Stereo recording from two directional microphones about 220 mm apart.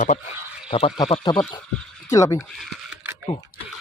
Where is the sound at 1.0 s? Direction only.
20° left (ahead or behind).